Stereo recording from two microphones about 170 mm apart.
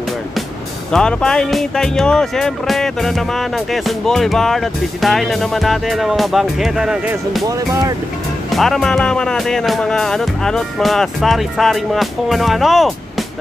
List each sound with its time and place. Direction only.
0.9 s speech: 5° left (ahead or behind)
7.4 s speech: 20° right (ahead or behind)
8.5 s speech: centre (ahead or behind)